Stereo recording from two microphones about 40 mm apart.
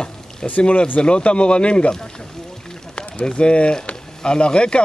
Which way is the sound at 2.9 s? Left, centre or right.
Left.